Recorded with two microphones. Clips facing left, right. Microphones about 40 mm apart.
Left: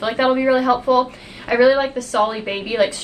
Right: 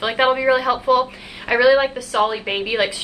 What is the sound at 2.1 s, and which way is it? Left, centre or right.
Speech, right.